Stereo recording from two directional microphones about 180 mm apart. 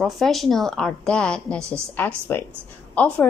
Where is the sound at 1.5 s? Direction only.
15° right (ahead or behind).